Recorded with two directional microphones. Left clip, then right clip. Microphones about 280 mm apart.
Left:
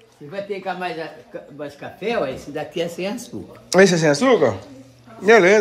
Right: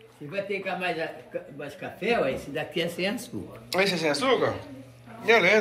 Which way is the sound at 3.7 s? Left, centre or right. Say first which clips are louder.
Left 10 dB; left.